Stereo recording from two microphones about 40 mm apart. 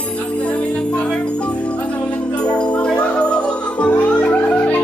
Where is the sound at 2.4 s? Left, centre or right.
Left.